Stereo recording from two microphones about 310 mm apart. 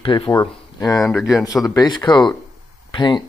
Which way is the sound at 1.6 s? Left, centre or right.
Centre.